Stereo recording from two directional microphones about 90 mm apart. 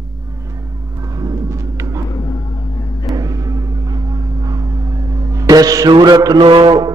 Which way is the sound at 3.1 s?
40° right (ahead or behind).